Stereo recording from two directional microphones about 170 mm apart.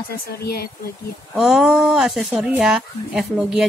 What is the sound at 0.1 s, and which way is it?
Speech, 65° left (ahead or behind).